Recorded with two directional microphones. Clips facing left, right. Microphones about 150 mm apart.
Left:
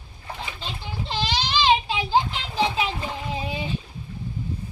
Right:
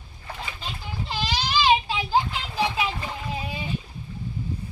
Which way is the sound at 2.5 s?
25° left (ahead or behind).